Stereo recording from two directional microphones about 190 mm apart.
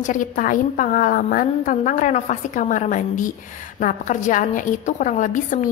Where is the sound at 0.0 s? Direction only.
45° left (ahead or behind).